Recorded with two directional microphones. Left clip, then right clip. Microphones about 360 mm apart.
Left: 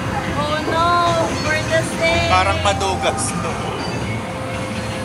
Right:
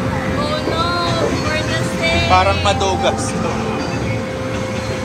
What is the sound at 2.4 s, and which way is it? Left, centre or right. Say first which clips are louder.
Music: right 2 dB; centre.